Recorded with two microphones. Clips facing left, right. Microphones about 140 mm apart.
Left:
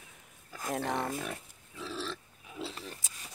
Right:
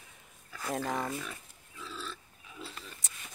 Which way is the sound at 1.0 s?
50° left (ahead or behind).